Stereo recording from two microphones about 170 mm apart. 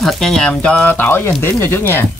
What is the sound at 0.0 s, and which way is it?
Speech, centre (ahead or behind).